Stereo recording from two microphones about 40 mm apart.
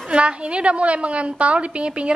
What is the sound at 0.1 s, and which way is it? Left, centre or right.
A woman's voice, right.